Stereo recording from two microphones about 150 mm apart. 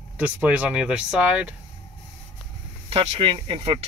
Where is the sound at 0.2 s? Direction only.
10° right (ahead or behind).